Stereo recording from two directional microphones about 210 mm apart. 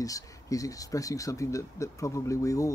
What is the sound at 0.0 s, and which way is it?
Speech, 15° left (ahead or behind).